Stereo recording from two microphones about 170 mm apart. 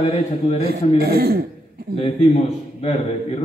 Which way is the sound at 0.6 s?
65° right (ahead or behind).